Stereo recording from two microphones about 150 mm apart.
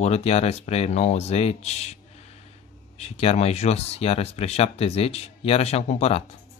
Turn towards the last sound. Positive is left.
turn(degrees=45)  # may be behind; listen again after turning